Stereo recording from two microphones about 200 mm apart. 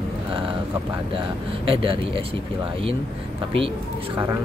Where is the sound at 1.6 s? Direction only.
25° right (ahead or behind).